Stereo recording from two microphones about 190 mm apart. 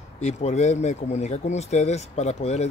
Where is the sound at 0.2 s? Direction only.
35° left (ahead or behind).